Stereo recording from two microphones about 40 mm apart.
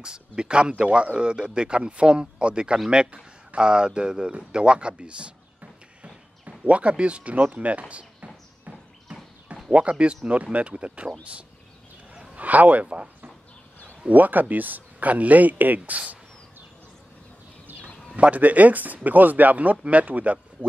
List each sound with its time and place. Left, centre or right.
0.0 s speech: right
6.6 s speech: right
7.9 s a sound: right
9.7 s speech: right
12.4 s speech: right
14.0 s speech: right
15.8 s speech: right
18.1 s speech: right